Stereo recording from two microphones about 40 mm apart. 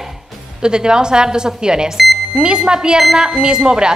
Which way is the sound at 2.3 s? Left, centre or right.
Centre.